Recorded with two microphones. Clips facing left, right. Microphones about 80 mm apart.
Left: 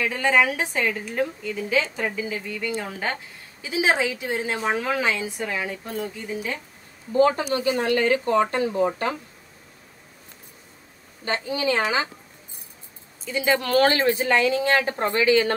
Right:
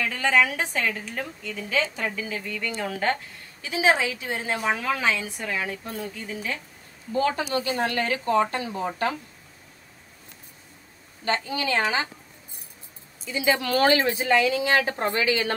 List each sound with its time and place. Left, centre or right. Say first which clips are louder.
0.0 s a woman's voice: left 2 dB; centre
3.6 s a woman's voice: even; centre
6.2 s a woman's voice: left 2 dB; centre
7.1 s speech: left 5 dB; left
11.2 s a woman's voice: left 2 dB; left
13.2 s speech: left 1 dB; left